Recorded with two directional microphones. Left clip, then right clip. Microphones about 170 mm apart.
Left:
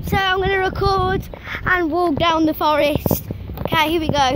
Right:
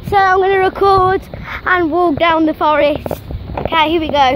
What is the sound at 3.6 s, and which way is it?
Speech, 5° left (ahead or behind).